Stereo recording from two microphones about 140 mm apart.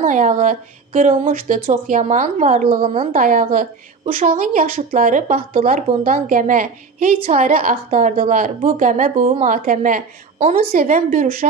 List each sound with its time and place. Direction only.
0.0 s a woman's voice: 65° right (ahead or behind)
2.9 s a woman's voice: 60° right (ahead or behind)
10.4 s a woman's voice: 50° right (ahead or behind)
10.7 s a woman's voice: 80° right